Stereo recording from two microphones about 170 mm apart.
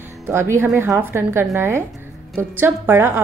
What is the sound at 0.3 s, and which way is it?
A woman's voice, 15° right (ahead or behind).